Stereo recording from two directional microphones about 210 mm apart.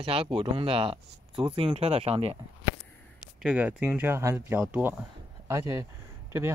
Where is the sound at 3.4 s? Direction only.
5° right (ahead or behind).